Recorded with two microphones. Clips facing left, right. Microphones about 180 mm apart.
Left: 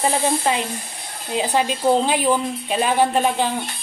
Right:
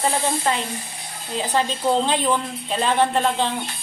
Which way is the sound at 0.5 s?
15° left (ahead or behind).